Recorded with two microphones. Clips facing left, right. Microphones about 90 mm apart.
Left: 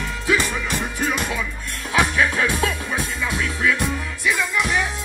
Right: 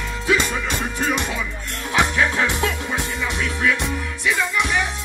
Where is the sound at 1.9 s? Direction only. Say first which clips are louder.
Even; 20° right (ahead or behind).